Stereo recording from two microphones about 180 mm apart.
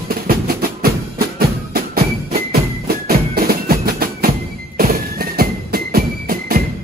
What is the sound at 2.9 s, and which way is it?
Music, 55° right (ahead or behind).